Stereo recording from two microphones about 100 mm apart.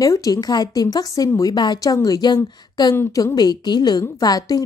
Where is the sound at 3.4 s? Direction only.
45° left (ahead or behind).